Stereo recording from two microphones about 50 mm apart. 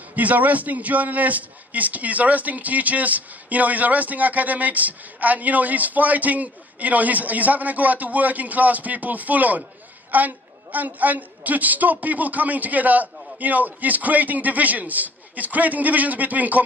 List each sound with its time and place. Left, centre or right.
0.1 s a man's voice: right